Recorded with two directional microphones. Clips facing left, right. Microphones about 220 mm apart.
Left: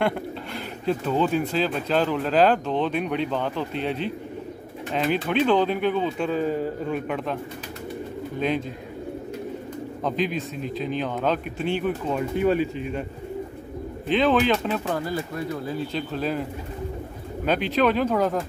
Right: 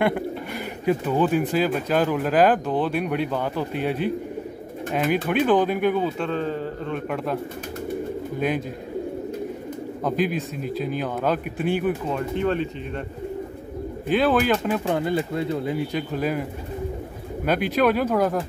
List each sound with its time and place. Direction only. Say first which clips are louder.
0.8 s speech: right 2 dB; 10° right (ahead or behind)
6.1 s a man's voice: left 2 dB; 5° left (ahead or behind)
8.4 s speech: even; 10° right (ahead or behind)
10.6 s speech: even; 10° right (ahead or behind)
12.1 s a man's voice: left 2 dB; 10° left (ahead or behind)
14.0 s speech: even; 10° right (ahead or behind)
14.9 s speech: right 4 dB; 20° right (ahead or behind)
17.5 s speech: right 1 dB; 10° right (ahead or behind)